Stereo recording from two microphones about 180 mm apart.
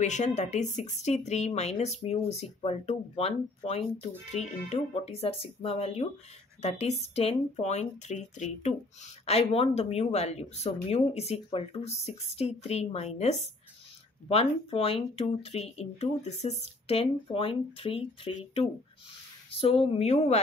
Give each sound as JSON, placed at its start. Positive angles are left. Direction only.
{"t": 0.0, "sound": "speech", "side_deg": 40}